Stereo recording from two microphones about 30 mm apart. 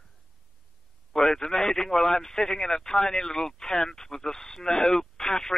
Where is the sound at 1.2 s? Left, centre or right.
Left.